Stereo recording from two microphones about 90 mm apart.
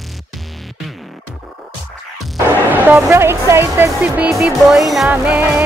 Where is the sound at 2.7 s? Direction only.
25° right (ahead or behind).